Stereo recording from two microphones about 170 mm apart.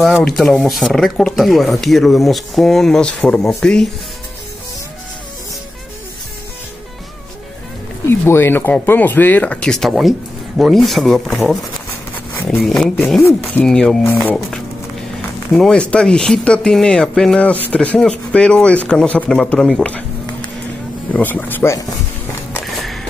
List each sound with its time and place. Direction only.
0.2 s speech: 5° left (ahead or behind)
8.1 s speech: 15° left (ahead or behind)
13.3 s speech: 15° left (ahead or behind)
13.7 s speech: 5° left (ahead or behind)
21.1 s speech: 10° left (ahead or behind)
22.5 s a sound: centre (ahead or behind)